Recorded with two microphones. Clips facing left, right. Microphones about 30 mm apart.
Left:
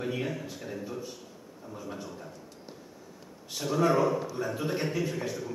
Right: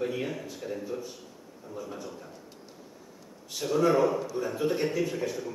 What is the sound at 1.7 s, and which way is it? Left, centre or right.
Speech, left.